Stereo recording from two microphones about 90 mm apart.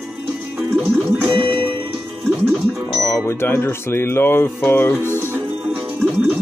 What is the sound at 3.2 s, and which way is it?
Speech, 25° left (ahead or behind).